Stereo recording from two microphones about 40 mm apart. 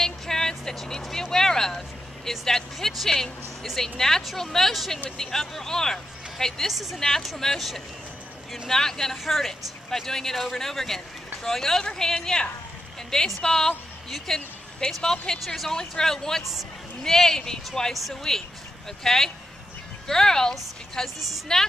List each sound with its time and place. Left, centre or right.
0.0 s vehicle: centre
1.1 s a sound: centre
3.0 s speech: centre
6.7 s speech: centre
7.0 s speech: centre
8.6 s speech: centre
9.1 s speech: centre
15.4 s speech: centre
15.7 s speech: centre